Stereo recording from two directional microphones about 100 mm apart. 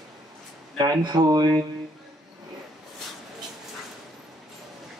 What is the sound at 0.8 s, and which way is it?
Speech, 40° right (ahead or behind).